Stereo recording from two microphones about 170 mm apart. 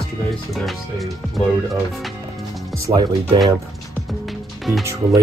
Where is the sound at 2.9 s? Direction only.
20° right (ahead or behind).